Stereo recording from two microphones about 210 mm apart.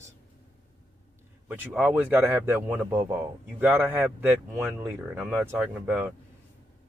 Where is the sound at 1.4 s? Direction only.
10° right (ahead or behind).